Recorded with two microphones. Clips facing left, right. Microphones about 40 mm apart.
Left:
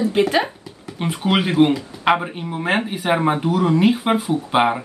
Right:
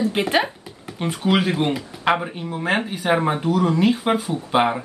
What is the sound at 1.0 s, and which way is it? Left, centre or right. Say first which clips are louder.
Speech: even; centre.